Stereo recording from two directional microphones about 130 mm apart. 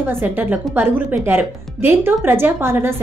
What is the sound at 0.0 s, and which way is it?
Speech, 15° right (ahead or behind).